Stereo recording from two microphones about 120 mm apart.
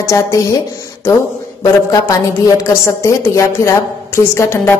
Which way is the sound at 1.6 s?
25° left (ahead or behind).